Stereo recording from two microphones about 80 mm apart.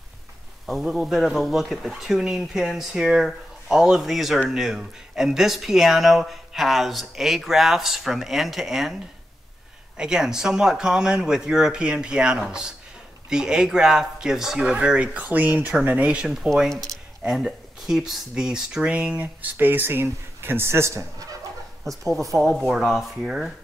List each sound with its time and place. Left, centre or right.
0.7 s speech: centre
9.9 s speech: centre
16.6 s speech: centre
17.2 s speech: centre; by 21.3 s right
21.8 s speech: centre